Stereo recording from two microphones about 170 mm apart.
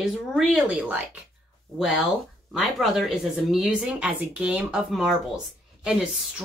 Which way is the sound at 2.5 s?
Centre (ahead or behind).